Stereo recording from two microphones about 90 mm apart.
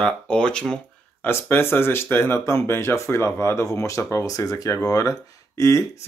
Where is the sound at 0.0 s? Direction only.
10° left (ahead or behind).